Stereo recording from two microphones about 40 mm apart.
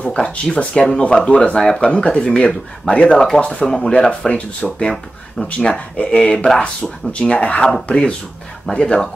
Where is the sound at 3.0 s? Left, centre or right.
Centre.